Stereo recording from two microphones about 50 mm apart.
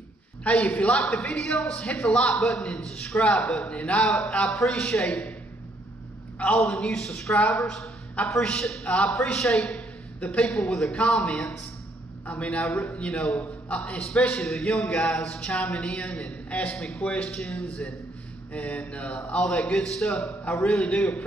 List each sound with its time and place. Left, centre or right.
0.4 s a man's voice: left; by 3.6 s centre
3.6 s a man's voice: left
4.0 s a man's voice: centre
6.4 s a man's voice: left
6.7 s a man's voice: centre
10.2 s a man's voice: left
10.5 s a man's voice: centre
12.3 s a man's voice: left
14.0 s a man's voice: centre; by 16.7 s left
16.7 s a man's voice: centre
18.5 s a man's voice: left
19.1 s a man's voice: centre